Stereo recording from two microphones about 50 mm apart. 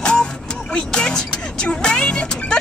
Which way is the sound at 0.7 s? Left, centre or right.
Centre.